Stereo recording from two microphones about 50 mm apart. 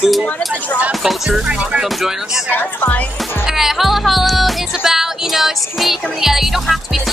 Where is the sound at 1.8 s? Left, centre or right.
Centre.